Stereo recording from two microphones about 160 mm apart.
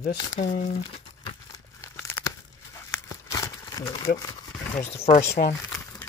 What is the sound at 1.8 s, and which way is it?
Tearing, 20° left (ahead or behind).